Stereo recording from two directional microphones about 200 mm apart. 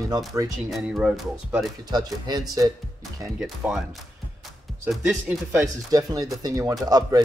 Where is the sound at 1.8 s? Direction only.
20° right (ahead or behind).